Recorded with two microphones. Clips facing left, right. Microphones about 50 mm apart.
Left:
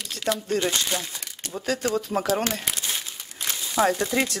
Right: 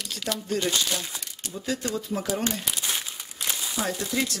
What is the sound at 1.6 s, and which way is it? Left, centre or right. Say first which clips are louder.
Speech: left 4 dB; left.